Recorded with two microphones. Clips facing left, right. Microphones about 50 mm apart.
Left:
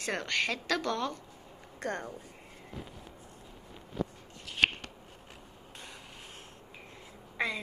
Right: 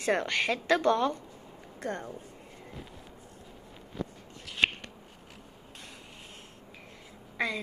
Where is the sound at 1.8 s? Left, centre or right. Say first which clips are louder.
Even; left.